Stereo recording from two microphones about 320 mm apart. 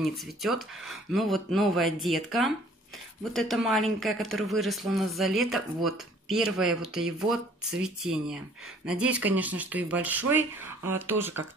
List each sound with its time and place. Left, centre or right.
0.0 s speech: centre